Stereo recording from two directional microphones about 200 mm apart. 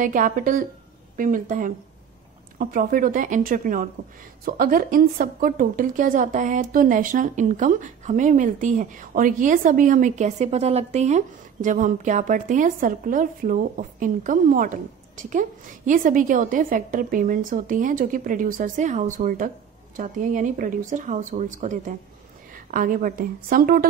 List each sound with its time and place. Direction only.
0.0 s a woman's voice: 40° right (ahead or behind)